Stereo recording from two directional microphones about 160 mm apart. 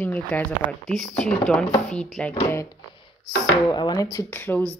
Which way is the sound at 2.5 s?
30° left (ahead or behind).